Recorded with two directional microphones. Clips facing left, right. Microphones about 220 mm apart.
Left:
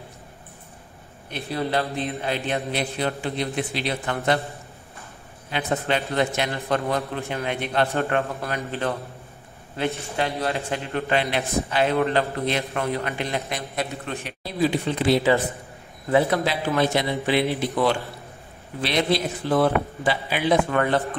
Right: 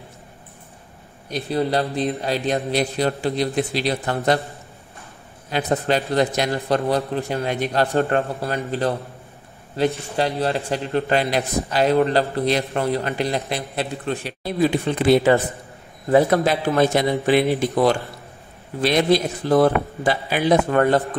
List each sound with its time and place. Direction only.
1.5 s a man's voice: 35° right (ahead or behind)
5.5 s a man's voice: 40° right (ahead or behind)
10.1 s a man's voice: 35° right (ahead or behind)
14.4 s a man's voice: 55° right (ahead or behind)
18.8 s a man's voice: 45° right (ahead or behind)